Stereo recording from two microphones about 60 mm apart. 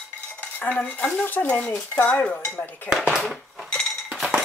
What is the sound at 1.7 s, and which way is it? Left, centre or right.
Speech, left.